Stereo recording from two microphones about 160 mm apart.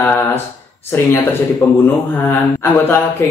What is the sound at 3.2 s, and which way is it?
Speech, 10° left (ahead or behind).